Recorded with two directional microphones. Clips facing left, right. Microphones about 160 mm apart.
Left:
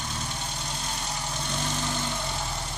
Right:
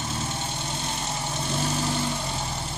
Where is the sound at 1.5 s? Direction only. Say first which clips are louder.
Right 5 dB; 5° right (ahead or behind).